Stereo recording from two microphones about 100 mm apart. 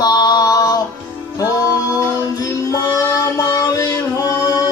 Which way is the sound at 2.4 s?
35° left (ahead or behind).